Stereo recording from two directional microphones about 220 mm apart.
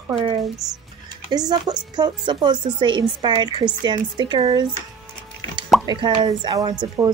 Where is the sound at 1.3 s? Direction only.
20° right (ahead or behind).